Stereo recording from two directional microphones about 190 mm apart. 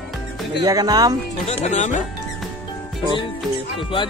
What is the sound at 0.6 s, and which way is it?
Speech, 20° right (ahead or behind).